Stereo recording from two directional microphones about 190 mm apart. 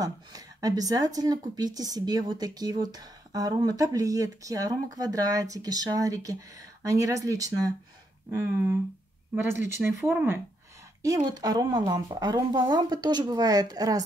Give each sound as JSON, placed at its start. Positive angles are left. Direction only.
{"t": 0.0, "sound": "speech", "side_deg": -20}